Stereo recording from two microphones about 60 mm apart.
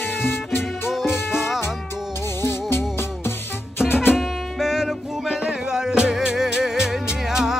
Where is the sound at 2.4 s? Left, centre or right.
Left.